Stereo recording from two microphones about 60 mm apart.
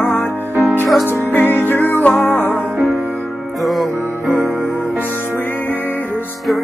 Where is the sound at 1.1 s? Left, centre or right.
Left.